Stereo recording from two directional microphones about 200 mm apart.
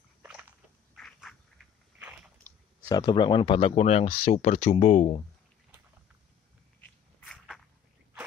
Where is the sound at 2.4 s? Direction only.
20° left (ahead or behind); by 5.2 s 35° left (ahead or behind).